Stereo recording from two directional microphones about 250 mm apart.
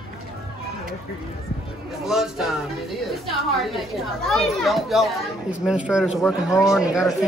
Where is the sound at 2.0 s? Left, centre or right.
Centre.